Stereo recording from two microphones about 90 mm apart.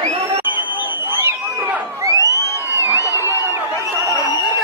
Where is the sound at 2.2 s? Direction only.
40° left (ahead or behind).